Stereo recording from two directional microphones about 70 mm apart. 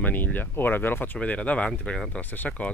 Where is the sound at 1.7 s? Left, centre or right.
Centre.